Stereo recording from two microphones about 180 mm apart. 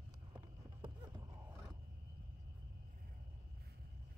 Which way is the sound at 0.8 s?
20° right (ahead or behind).